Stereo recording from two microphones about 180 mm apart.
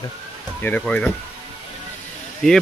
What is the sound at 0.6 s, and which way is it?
Speech, 10° left (ahead or behind).